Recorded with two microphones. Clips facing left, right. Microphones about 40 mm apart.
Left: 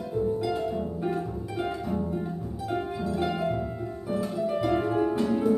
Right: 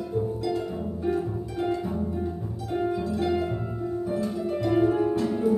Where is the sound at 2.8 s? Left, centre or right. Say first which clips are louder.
Right 4 dB; centre.